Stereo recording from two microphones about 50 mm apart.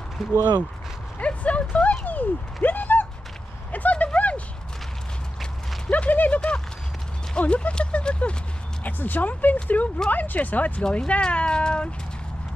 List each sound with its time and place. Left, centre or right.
0.2 s speech: centre
1.2 s speech: left
3.7 s a sound: left
5.9 s speech: left
8.8 s speech: left
10.8 s speech: centre